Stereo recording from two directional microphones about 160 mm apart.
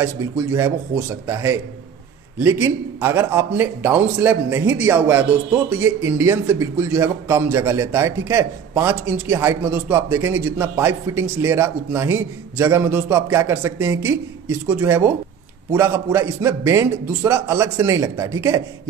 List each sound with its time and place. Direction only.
0.0 s a man's voice: 15° right (ahead or behind)